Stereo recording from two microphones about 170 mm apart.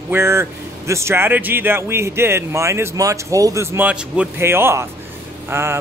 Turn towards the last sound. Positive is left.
turn(degrees=-15)  # may be behind; listen again after turning